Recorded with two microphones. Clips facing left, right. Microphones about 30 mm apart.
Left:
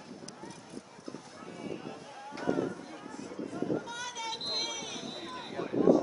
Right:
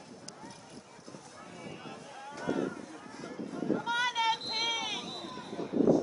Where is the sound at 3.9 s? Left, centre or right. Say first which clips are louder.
Right 9 dB; right.